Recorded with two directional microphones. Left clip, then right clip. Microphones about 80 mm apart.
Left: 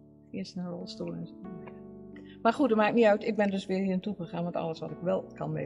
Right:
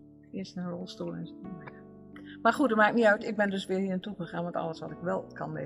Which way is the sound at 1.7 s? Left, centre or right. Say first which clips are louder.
Left 1 dB; left.